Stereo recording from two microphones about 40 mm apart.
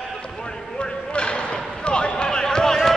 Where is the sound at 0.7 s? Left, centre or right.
Left.